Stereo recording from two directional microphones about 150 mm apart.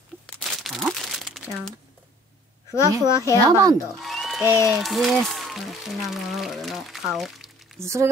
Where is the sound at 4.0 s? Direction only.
Centre (ahead or behind).